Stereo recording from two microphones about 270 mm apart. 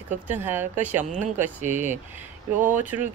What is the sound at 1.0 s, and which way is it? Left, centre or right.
Speech, right.